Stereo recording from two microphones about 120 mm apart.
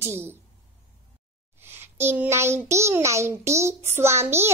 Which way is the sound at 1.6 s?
20° right (ahead or behind).